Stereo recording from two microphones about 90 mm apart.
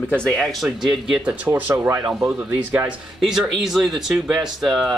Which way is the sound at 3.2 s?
5° right (ahead or behind).